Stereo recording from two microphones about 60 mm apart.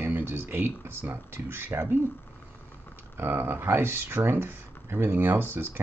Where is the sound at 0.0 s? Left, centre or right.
Right.